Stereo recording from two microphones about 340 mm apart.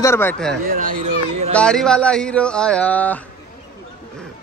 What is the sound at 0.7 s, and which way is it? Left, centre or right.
Speech, right.